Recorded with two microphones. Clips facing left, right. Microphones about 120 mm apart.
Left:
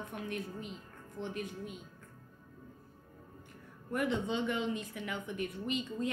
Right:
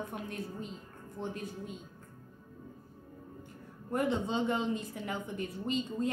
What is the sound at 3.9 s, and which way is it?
A woman's voice, 35° right (ahead or behind).